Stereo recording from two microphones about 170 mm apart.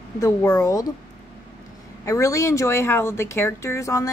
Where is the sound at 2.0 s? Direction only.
20° left (ahead or behind).